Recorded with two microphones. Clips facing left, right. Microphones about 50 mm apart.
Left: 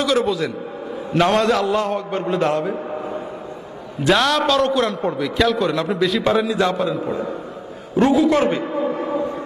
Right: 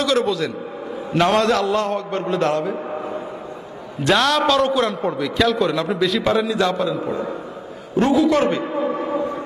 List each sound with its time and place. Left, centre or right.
0.0 s a man's voice: centre
4.0 s a man's voice: centre
8.8 s a sound: right